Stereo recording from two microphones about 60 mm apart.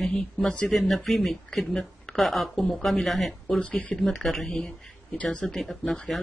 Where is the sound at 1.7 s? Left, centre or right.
Centre.